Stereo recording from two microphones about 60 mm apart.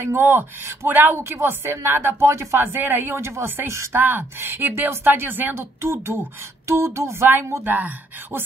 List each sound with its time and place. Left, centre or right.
0.0 s a woman's voice: right
0.8 s a woman's voice: right
1.3 s a woman's voice: right
7.6 s a woman's voice: right